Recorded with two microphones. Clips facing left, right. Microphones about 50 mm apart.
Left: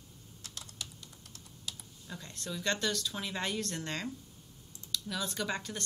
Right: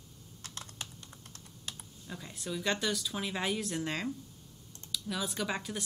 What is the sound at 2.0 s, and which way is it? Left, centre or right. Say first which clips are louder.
A woman's voice: right 2 dB; centre.